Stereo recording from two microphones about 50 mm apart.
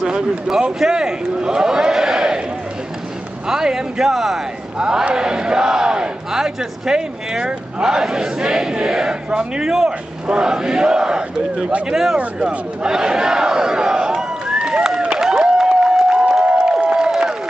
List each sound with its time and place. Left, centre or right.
0.0 s a man's voice: centre
3.4 s battle cry: centre
4.7 s battle cry: centre
15.1 s a sound: centre
16.4 s crowd: right